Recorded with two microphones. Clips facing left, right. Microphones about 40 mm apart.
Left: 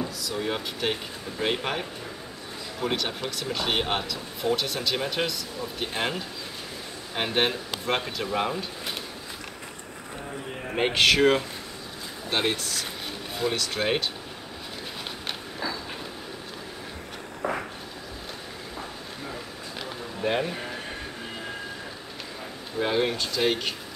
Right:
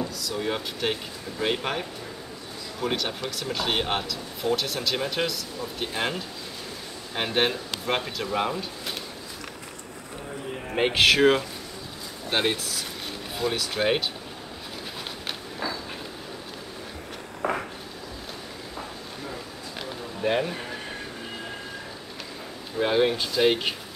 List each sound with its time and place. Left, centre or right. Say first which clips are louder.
0.0 s speech: right 1 dB; centre
10.7 s speech: right 1 dB; centre
17.4 s vehicle: right 2 dB; right
20.2 s speech: right 1 dB; centre
22.8 s speech: right 3 dB; centre